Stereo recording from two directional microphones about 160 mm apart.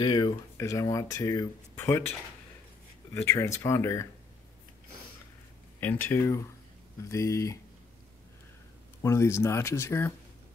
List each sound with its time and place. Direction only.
0.0 s speech: 25° left (ahead or behind)
3.2 s speech: 15° left (ahead or behind)
5.8 s speech: 10° left (ahead or behind)
9.0 s speech: 20° left (ahead or behind)